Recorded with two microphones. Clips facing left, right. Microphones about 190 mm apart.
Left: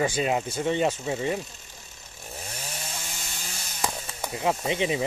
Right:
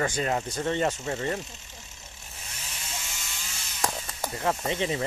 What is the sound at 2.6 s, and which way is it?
Chainsaw, 40° left (ahead or behind).